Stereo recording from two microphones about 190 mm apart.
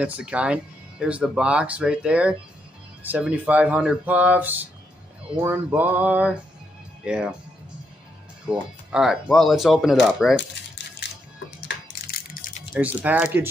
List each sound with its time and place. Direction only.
0.0 s speech: 5° right (ahead or behind)
8.5 s speech: 5° right (ahead or behind)
11.6 s crushing: 50° left (ahead or behind)
12.7 s speech: 10° right (ahead or behind)